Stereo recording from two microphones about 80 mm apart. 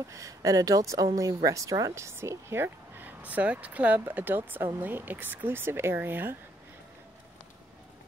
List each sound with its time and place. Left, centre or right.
0.1 s speech: right